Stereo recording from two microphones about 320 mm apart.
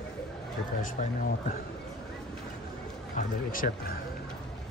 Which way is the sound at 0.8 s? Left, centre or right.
Left.